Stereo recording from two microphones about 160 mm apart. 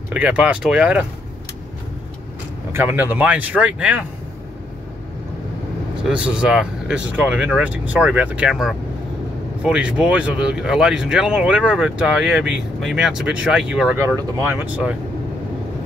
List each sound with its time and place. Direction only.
0.1 s speech: 10° right (ahead or behind)
2.7 s speech: 15° right (ahead or behind)
6.0 s speech: 5° right (ahead or behind)
13.9 s speech: 15° right (ahead or behind)